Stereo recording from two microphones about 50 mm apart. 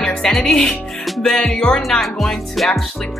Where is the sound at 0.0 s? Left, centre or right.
Centre.